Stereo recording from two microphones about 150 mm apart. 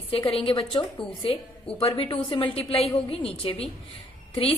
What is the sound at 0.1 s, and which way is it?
A woman's voice, 40° left (ahead or behind).